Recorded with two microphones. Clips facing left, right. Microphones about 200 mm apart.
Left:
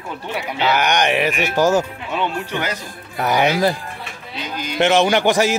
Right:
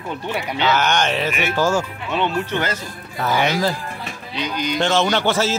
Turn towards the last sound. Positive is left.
turn(degrees=15)  # may be behind; listen again after turning